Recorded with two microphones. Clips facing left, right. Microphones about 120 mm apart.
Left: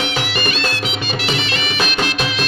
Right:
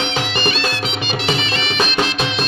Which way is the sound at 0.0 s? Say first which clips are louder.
Right 1 dB; 5° left (ahead or behind).